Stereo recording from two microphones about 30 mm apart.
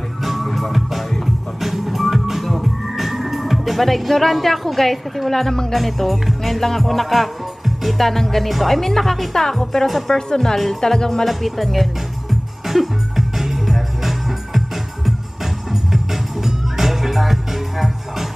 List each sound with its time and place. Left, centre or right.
0.2 s music: centre
8.5 s a woman's voice: centre
9.8 s music: centre
10.1 s a woman's voice: centre
11.2 s speech: centre
12.6 s music: centre
15.7 s music: centre